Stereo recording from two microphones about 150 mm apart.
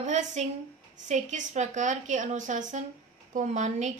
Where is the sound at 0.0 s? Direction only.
55° right (ahead or behind).